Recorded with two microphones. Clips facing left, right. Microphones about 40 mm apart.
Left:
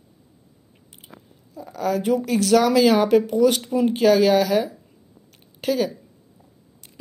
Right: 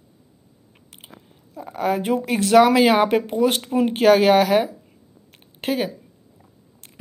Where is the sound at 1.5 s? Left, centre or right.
Right.